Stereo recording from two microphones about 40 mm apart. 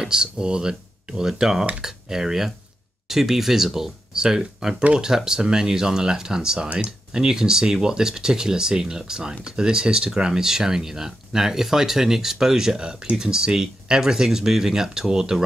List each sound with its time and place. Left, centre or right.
0.0 s speech: centre